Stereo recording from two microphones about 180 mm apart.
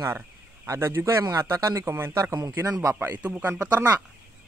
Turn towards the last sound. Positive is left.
turn(degrees=-10)  # may be behind; listen again after turning